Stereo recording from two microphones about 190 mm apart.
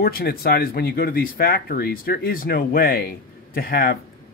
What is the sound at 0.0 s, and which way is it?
Speech, 50° left (ahead or behind).